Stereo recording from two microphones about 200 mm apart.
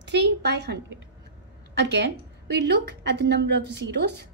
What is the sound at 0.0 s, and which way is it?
A woman's voice, 60° right (ahead or behind).